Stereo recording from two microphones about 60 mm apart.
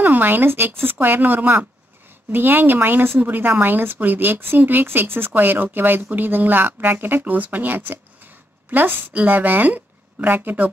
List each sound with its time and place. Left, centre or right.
0.0 s a woman's voice: right